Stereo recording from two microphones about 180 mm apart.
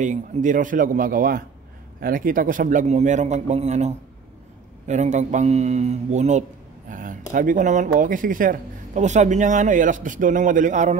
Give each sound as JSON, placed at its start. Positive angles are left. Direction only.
{"t": 0.0, "sound": "a man's voice", "side_deg": -45}